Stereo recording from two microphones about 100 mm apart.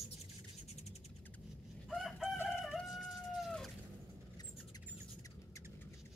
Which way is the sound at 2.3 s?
20° left (ahead or behind).